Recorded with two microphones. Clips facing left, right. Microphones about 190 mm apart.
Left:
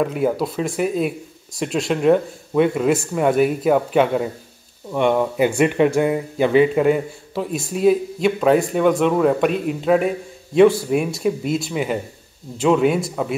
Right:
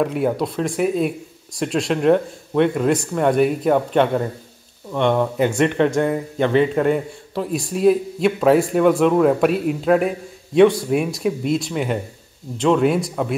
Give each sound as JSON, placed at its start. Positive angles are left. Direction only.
{"t": 0.0, "sound": "speech", "side_deg": 0}